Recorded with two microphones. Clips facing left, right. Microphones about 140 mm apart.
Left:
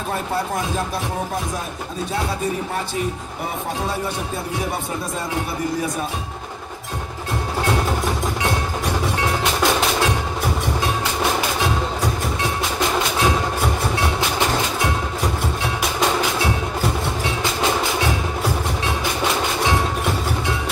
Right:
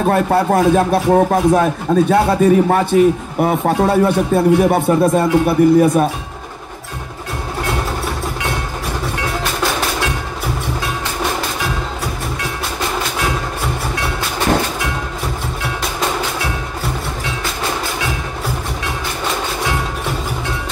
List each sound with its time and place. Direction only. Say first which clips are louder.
0.0 s speech: right 10 dB; 65° right (ahead or behind)